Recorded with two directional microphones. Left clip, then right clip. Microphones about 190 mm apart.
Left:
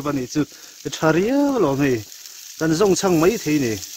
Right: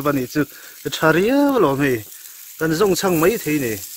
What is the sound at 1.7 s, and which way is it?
Speech, 20° left (ahead or behind).